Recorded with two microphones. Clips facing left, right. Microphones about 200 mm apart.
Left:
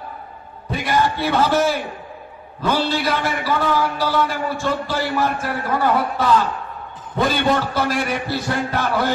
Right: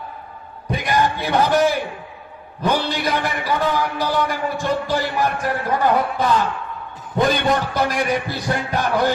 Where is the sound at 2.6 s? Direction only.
15° right (ahead or behind).